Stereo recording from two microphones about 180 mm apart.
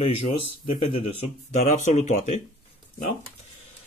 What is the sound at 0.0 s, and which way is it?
Speech, 35° left (ahead or behind).